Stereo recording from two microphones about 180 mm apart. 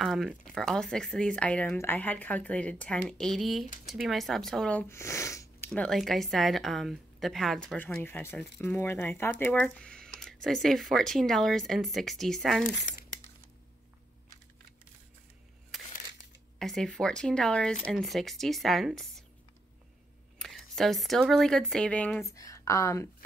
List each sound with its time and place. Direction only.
0.0 s speech: centre (ahead or behind); by 5.7 s 15° left (ahead or behind)
5.7 s speech: centre (ahead or behind)
16.5 s speech: centre (ahead or behind)
20.3 s speech: centre (ahead or behind)
22.3 s speech: 15° left (ahead or behind)